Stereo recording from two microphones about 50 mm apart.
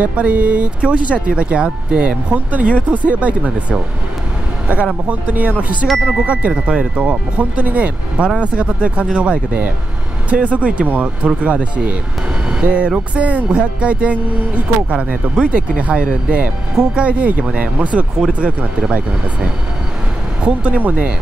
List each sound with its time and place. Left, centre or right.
0.0 s speech: right
5.0 s speech: right
20.4 s speech: right